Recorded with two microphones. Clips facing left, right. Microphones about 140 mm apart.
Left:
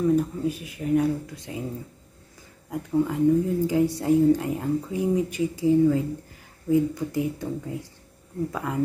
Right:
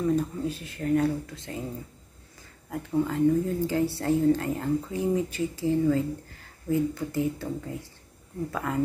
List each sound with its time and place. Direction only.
0.1 s a woman's voice: 10° left (ahead or behind)
2.7 s a woman's voice: 15° left (ahead or behind)
8.5 s a woman's voice: 15° left (ahead or behind)